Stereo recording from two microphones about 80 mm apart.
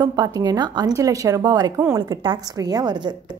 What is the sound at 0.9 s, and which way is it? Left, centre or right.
A woman's voice, right.